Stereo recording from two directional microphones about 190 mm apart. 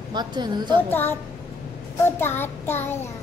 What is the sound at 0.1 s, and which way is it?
Speech, 20° right (ahead or behind).